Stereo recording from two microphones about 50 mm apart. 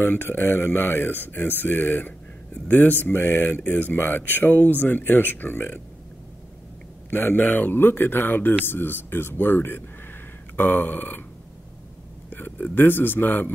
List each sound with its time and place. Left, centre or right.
0.1 s speech: left
7.1 s speech: left
12.3 s speech: left